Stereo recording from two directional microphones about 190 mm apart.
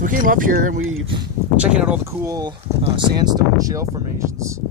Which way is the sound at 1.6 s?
5° right (ahead or behind).